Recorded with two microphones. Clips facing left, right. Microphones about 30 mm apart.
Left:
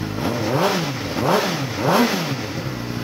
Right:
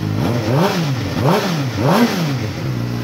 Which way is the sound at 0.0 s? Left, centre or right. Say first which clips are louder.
Right 3 dB; centre.